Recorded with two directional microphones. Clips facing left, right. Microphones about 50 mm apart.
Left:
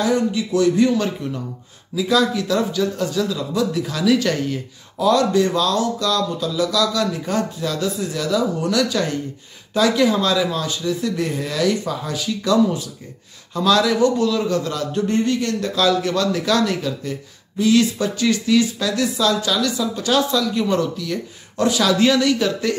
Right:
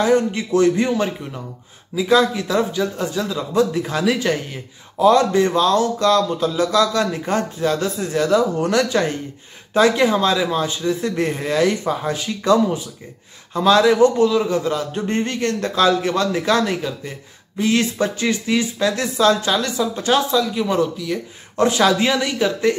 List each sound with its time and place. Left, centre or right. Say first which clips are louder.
0.0 s a man's voice: right 2 dB; right; by 21.2 s centre
21.5 s speech: right 2 dB; right
21.9 s a man's voice: left 3 dB; right